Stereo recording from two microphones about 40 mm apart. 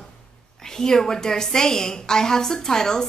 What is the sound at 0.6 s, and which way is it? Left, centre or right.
A woman's voice, centre.